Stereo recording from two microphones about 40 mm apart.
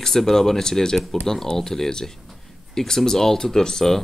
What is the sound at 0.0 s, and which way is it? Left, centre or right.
Speech, centre.